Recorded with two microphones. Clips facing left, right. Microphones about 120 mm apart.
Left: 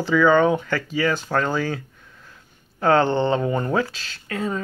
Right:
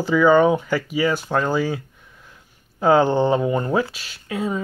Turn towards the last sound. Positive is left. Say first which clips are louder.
# right 2 dB
turn(degrees=-10)  # may be behind; listen again after turning